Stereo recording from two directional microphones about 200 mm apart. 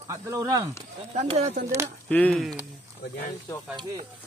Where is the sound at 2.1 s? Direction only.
5° left (ahead or behind).